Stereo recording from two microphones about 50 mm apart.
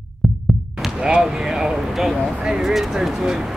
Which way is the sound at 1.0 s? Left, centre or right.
Centre.